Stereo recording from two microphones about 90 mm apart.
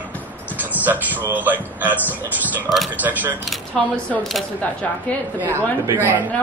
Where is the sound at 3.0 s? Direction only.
20° right (ahead or behind).